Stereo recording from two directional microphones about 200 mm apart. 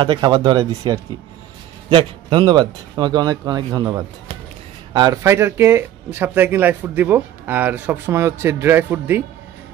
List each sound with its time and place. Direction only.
0.0 s speech: 20° right (ahead or behind)